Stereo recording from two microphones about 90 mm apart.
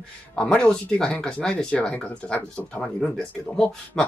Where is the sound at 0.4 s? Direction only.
10° left (ahead or behind).